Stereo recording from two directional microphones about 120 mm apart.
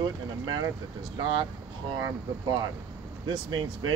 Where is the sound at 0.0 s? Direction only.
40° right (ahead or behind).